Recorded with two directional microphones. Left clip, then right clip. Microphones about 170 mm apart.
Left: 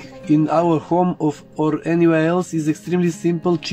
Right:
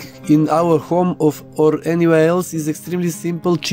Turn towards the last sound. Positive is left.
turn(degrees=-65)  # may be behind; listen again after turning